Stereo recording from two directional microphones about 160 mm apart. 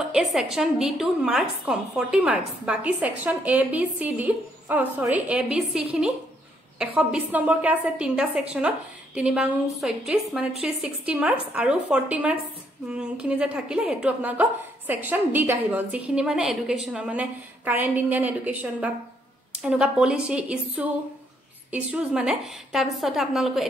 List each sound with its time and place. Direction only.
0.1 s a woman's voice: centre (ahead or behind)